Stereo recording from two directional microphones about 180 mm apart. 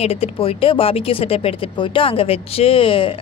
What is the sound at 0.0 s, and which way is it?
A woman's voice, 35° left (ahead or behind).